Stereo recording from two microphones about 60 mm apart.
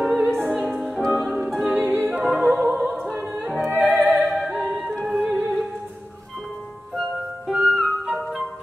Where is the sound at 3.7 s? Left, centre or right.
Right.